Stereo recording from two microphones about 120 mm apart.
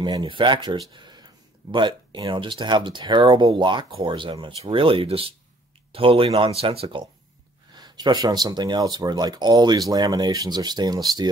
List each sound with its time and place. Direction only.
0.0 s speech: 40° right (ahead or behind)
7.7 s speech: 35° right (ahead or behind)